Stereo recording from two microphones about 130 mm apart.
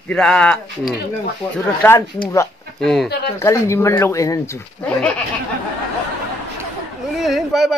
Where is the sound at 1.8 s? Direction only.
10° left (ahead or behind).